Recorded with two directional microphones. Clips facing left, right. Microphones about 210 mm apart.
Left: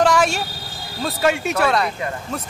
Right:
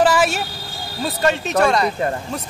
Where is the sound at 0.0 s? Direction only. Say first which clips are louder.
Right 1 dB; 5° right (ahead or behind).